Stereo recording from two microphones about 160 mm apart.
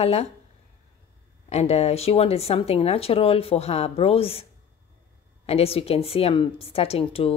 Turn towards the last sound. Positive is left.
turn(degrees=40)  # may be behind; listen again after turning